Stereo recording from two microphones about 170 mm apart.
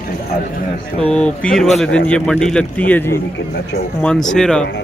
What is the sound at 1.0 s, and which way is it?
Speech, 5° left (ahead or behind).